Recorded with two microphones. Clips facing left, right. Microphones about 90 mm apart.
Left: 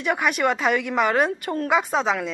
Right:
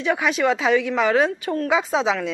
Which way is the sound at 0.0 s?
5° left (ahead or behind).